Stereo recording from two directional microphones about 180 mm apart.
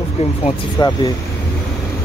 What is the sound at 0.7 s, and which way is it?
Speech, 20° left (ahead or behind).